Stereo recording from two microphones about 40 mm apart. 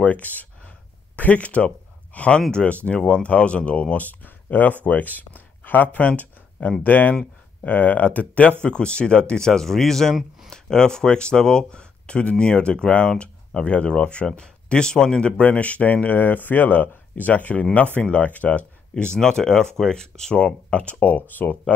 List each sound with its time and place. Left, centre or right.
0.0 s a sound: left
2.1 s speech: left
8.6 s speech: left
9.5 s speech: centre
15.2 s speech: left
19.1 s speech: centre
20.7 s speech: left